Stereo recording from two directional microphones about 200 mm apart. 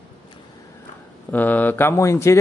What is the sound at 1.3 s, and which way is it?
Speech, 10° left (ahead or behind).